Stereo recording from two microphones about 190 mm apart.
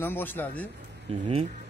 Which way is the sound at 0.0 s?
10° left (ahead or behind).